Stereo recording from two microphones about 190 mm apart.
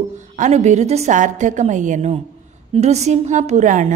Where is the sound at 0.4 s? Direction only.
35° right (ahead or behind).